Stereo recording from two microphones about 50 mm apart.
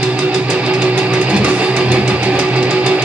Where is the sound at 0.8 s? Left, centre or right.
Right.